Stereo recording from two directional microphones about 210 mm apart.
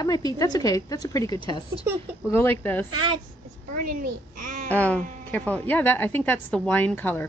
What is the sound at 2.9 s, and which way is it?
Speech, 20° right (ahead or behind).